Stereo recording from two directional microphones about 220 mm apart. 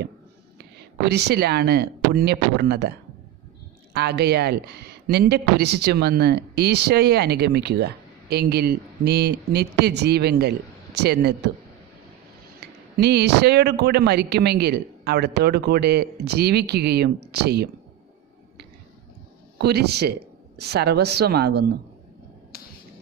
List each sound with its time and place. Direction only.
1.0 s speech: 50° right (ahead or behind)
3.9 s speech: 50° right (ahead or behind)
12.5 s speech: 50° right (ahead or behind)
19.6 s speech: 50° right (ahead or behind)